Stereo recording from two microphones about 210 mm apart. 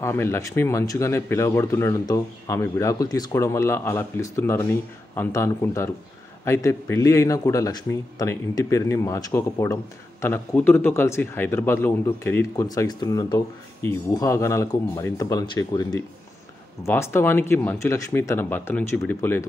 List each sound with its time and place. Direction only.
0.0 s speech: 10° left (ahead or behind)